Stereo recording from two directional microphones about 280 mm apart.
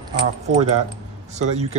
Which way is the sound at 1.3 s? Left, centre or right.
Right.